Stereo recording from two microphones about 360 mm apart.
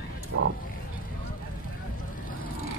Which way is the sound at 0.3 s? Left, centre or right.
Right.